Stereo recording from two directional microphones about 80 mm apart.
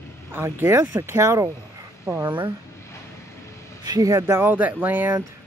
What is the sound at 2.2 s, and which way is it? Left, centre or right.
Speech, right.